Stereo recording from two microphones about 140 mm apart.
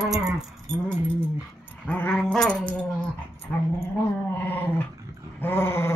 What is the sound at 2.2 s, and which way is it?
Dog, 5° left (ahead or behind).